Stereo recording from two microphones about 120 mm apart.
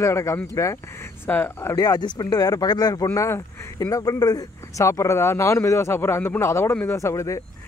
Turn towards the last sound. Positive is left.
turn(degrees=25)  # may be behind; listen again after turning